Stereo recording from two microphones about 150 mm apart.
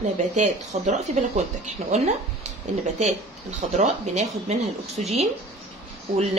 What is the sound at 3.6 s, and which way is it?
Speech, 50° right (ahead or behind).